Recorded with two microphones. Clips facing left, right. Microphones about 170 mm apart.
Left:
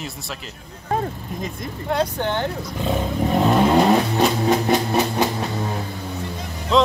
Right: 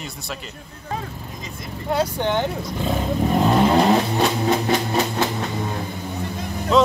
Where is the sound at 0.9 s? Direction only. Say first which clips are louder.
Left 6 dB; 45° left (ahead or behind).